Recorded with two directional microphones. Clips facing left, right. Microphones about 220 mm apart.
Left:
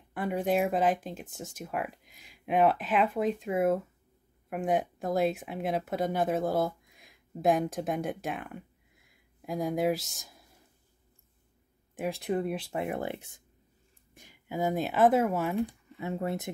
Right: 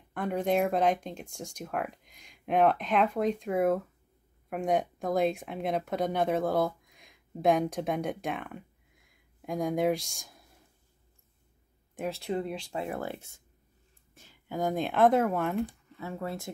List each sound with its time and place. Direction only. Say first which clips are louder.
0.1 s speech: even; 5° left (ahead or behind)
11.9 s a sound: left 1 dB; 5° left (ahead or behind)
12.2 s speech: left 4 dB; 20° left (ahead or behind)
16.0 s speech: left 4 dB; 20° left (ahead or behind)